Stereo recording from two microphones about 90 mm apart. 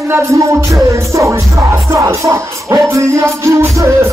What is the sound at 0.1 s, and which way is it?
Music, 35° right (ahead or behind).